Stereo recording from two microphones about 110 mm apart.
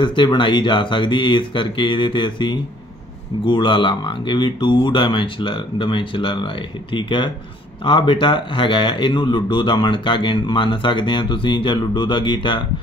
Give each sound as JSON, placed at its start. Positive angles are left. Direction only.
{"t": 0.0, "sound": "speech", "side_deg": 45}